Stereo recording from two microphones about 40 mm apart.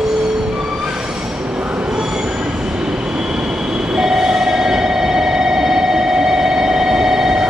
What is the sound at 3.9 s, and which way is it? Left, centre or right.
Train, centre.